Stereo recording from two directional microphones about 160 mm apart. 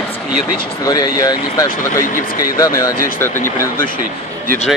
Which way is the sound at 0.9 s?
25° left (ahead or behind).